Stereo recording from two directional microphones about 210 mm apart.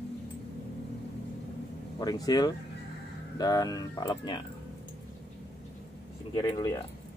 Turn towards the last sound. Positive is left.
turn(degrees=20)  # may be behind; listen again after turning